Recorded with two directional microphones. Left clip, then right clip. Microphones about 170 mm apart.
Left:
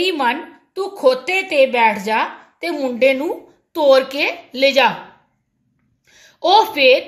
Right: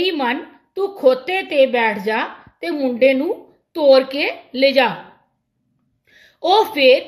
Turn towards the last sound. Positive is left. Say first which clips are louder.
# left 1 dB
turn(degrees=-35)  # may be behind; listen again after turning